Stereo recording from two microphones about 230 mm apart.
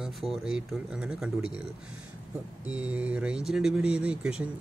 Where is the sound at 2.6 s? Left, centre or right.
Centre.